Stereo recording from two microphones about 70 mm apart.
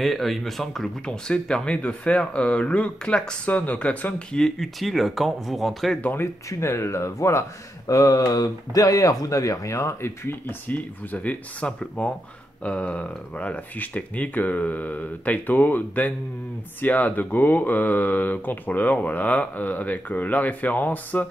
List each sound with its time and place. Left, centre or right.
0.0 s speech: centre
4.4 s speech: centre
5.9 s speech: left
6.6 s speech: left
10.7 s speech: left